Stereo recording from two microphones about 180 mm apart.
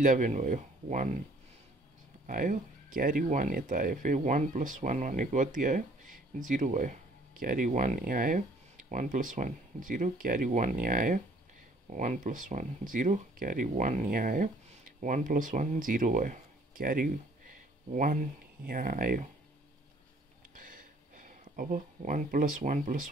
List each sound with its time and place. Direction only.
0.0 s speech: 45° right (ahead or behind)
2.2 s speech: 50° right (ahead or behind)
20.5 s a sound: 50° right (ahead or behind)